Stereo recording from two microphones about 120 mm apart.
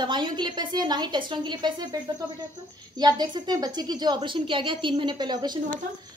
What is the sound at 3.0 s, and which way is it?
A woman's voice, 35° right (ahead or behind).